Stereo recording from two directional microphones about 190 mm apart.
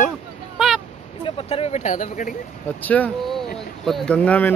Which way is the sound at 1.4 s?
30° left (ahead or behind).